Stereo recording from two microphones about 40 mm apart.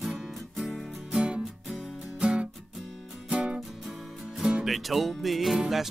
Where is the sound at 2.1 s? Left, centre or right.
Right.